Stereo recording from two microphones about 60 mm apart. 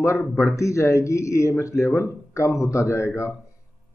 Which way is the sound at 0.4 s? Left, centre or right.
Left.